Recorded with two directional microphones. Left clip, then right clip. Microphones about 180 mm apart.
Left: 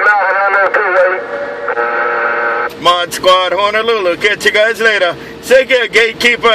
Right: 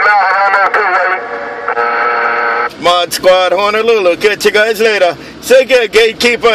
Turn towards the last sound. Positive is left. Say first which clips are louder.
# right 1 dB
turn(degrees=-30)  # may be behind; listen again after turning